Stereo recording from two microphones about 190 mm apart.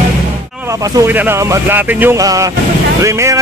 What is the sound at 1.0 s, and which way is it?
Speech, 10° right (ahead or behind).